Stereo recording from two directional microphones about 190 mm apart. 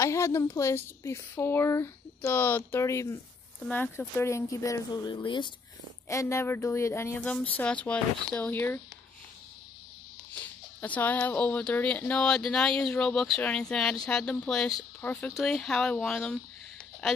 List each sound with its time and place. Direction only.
0.0 s a woman's voice: 15° left (ahead or behind)
10.8 s speech: 10° left (ahead or behind)